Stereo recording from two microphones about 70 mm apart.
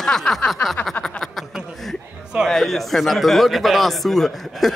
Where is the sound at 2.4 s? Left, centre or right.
Centre.